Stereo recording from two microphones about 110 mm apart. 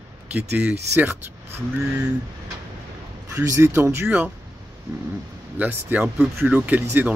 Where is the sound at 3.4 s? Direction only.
25° right (ahead or behind).